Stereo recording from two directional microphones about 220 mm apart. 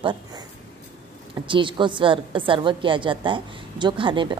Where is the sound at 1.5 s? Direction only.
20° right (ahead or behind).